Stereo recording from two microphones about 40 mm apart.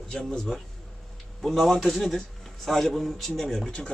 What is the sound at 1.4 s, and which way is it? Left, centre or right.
A man's voice, centre.